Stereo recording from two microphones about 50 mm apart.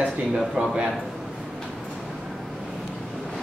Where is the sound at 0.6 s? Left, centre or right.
Right.